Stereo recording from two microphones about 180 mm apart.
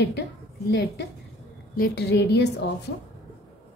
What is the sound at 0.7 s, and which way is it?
Speech, 70° left (ahead or behind).